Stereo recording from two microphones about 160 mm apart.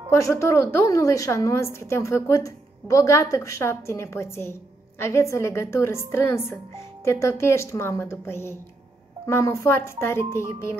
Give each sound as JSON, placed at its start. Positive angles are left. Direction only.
{"t": 0.1, "sound": "a woman's voice", "side_deg": 20}